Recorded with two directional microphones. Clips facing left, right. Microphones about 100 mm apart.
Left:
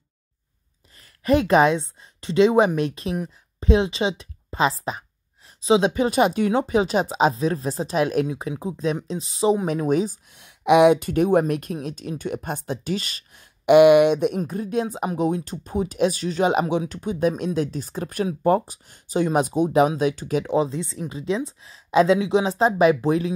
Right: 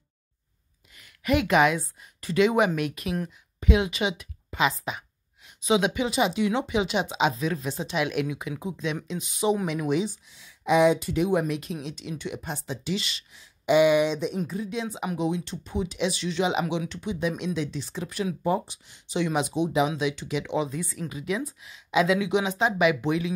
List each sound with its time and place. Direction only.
0.9 s a woman's voice: 35° left (ahead or behind)
6.0 s speech: 50° left (ahead or behind)
10.4 s speech: 65° left (ahead or behind); by 23.3 s 40° left (ahead or behind)